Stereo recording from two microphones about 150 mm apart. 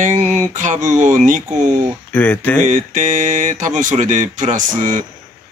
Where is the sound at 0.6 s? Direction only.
55° right (ahead or behind).